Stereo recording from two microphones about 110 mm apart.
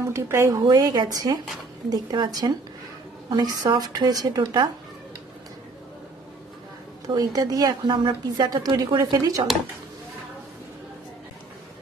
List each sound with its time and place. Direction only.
0.0 s a woman's voice: 25° right (ahead or behind)
7.2 s a woman's voice: 35° right (ahead or behind)